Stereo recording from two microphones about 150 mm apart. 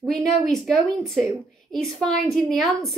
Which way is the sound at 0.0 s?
5° left (ahead or behind).